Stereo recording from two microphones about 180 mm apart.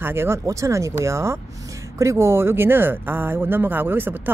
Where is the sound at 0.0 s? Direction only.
15° right (ahead or behind).